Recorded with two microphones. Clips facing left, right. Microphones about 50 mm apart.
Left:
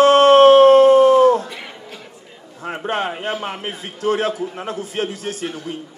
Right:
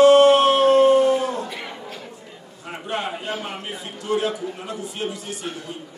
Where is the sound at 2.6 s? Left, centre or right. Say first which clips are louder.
Left 5 dB; left.